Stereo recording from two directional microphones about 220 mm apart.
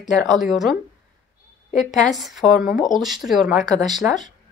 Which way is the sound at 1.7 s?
35° left (ahead or behind).